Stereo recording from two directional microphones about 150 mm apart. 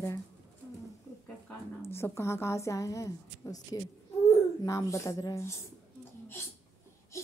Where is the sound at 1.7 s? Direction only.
15° left (ahead or behind).